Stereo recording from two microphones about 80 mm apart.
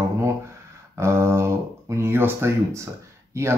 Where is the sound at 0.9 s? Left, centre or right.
Right.